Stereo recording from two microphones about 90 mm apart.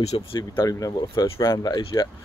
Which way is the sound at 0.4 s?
45° left (ahead or behind).